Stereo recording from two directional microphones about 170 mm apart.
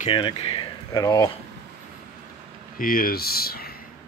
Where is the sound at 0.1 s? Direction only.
35° left (ahead or behind).